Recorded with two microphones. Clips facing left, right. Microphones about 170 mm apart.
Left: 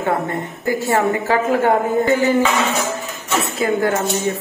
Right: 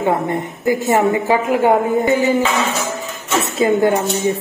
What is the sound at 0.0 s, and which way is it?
A woman's voice, 20° right (ahead or behind).